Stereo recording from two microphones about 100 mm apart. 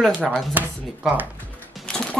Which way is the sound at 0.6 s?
15° right (ahead or behind).